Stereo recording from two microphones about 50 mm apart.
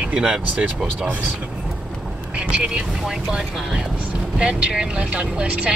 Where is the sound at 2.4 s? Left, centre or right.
Centre.